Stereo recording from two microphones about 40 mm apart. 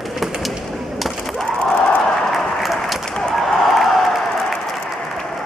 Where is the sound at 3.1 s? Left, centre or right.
Centre.